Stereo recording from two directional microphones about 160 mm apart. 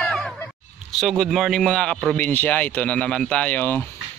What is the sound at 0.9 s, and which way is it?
A man's voice, centre (ahead or behind).